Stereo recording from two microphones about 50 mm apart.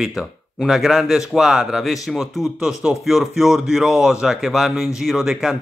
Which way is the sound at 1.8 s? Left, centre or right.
Centre.